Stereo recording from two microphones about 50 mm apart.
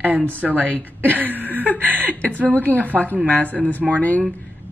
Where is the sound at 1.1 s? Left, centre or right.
Right.